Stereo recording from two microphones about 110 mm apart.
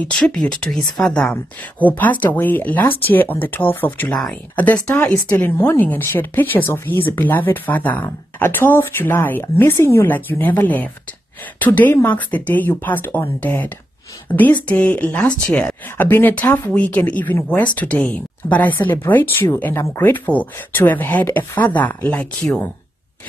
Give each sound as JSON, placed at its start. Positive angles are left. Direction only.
{"t": 0.0, "sound": "speech", "side_deg": 10}